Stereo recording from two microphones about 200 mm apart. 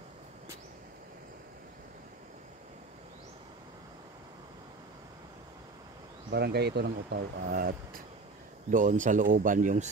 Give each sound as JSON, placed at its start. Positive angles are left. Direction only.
{"t": 6.3, "sound": "speech", "side_deg": -55}